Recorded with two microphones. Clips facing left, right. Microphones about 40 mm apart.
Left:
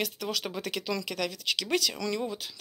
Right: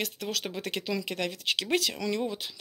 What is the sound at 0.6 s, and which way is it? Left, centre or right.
Speech, centre.